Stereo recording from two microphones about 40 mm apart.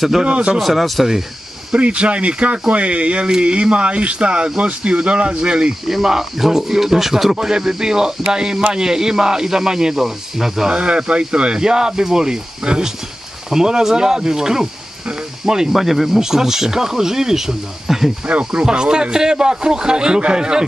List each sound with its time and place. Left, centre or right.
0.2 s a man's voice: right
0.6 s speech: centre
1.7 s a man's voice: right
5.9 s speech: centre
10.7 s a man's voice: right
18.2 s a man's voice: right